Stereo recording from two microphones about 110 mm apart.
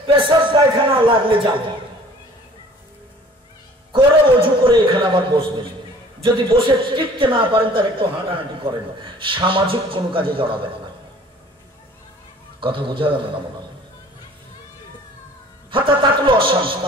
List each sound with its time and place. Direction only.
0.0 s a sound: 50° right (ahead or behind)
3.9 s a man's voice: 50° right (ahead or behind)
12.5 s a man's voice: 50° right (ahead or behind)
15.7 s a man's voice: 50° right (ahead or behind)